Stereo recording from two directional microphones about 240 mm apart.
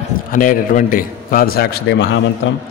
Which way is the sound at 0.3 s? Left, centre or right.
Left.